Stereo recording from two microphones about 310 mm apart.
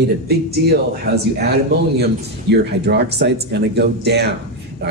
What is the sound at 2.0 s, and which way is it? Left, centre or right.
Speech, right.